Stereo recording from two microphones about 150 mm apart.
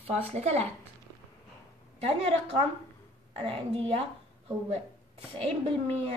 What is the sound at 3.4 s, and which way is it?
Speech, 40° right (ahead or behind).